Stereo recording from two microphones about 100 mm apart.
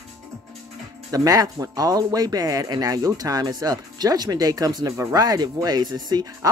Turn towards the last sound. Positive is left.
turn(degrees=-40)  # may be behind; listen again after turning